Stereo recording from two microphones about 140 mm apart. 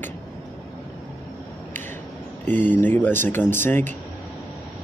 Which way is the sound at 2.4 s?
15° left (ahead or behind).